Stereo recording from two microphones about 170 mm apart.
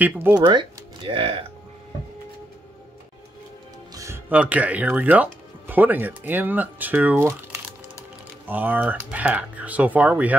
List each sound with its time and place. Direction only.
0.0 s speech: 10° right (ahead or behind)
0.5 s speech: 30° right (ahead or behind)
3.9 s speech: 15° right (ahead or behind)
8.5 s speech: 10° right (ahead or behind)